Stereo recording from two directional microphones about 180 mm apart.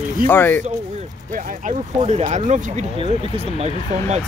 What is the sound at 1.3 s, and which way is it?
Speech, 45° right (ahead or behind).